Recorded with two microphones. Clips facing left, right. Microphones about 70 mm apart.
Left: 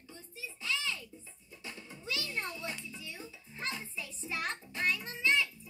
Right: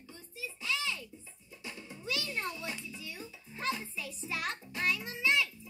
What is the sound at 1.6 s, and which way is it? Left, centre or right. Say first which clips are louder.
Music: right 2 dB; left.